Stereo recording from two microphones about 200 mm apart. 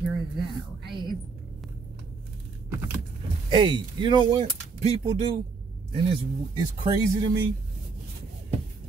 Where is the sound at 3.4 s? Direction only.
25° right (ahead or behind).